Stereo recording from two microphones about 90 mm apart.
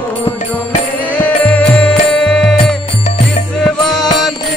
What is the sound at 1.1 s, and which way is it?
Music, 15° left (ahead or behind).